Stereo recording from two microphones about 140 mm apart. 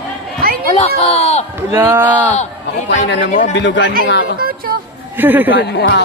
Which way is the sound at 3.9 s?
90° right.